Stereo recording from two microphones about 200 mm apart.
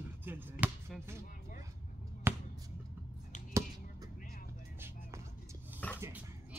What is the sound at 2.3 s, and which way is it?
Basketball bounce, 10° right (ahead or behind).